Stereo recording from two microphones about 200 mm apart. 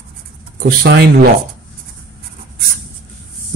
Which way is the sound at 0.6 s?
50° right (ahead or behind).